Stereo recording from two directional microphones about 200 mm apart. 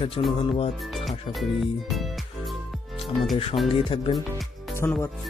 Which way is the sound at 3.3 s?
25° left (ahead or behind).